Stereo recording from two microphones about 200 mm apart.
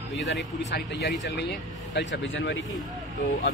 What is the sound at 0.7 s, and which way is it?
Speech, 60° left (ahead or behind).